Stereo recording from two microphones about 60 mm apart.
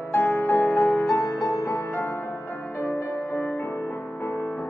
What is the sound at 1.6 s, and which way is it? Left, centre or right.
Music, left.